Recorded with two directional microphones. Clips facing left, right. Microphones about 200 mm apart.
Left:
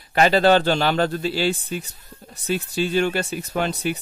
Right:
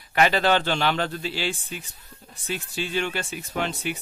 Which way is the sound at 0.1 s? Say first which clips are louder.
Left 5 dB; 35° left (ahead or behind).